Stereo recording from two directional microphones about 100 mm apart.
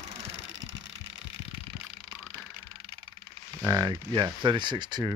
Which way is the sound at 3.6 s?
35° right (ahead or behind).